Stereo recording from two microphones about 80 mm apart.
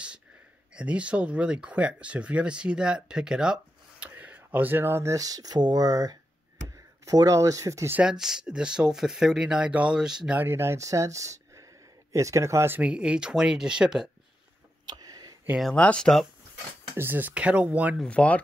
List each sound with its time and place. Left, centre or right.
0.7 s speech: centre
4.0 s speech: centre; by 7.9 s right
8.0 s speech: centre
10.3 s speech: right
12.7 s speech: centre
14.9 s a sound: right
15.7 s speech: centre
16.9 s speech: right
18.0 s speech: centre